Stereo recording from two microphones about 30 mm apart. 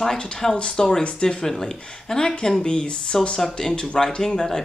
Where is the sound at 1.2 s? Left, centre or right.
Left.